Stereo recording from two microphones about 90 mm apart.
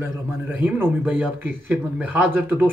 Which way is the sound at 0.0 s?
20° right (ahead or behind).